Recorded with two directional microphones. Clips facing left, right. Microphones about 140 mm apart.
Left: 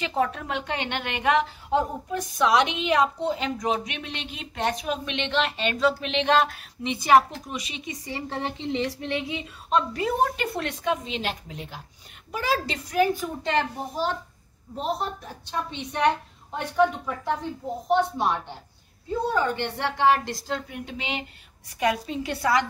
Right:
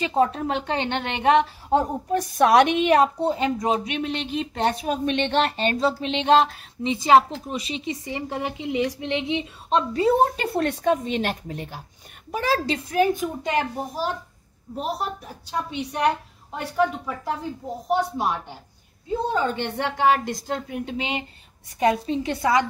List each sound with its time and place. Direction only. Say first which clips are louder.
0.0 s a woman's voice: right 5 dB; 30° right (ahead or behind)
1.7 s a woman's voice: right 4 dB; 50° right (ahead or behind)
12.7 s a woman's voice: right 2 dB; 20° right (ahead or behind)
19.2 s a woman's voice: even; 20° right (ahead or behind)